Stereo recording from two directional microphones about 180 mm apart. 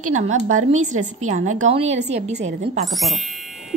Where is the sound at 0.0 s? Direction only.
40° right (ahead or behind).